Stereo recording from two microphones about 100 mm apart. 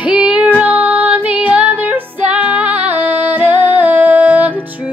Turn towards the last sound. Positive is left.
turn(degrees=-15)  # may be behind; listen again after turning